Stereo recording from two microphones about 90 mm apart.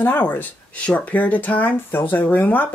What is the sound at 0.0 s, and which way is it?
Speech, 20° left (ahead or behind).